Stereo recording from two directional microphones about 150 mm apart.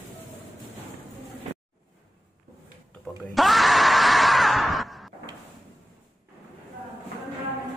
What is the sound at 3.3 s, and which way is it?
Screaming, centre (ahead or behind).